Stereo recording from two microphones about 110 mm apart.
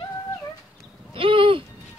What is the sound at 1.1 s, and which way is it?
Speech, 55° right (ahead or behind).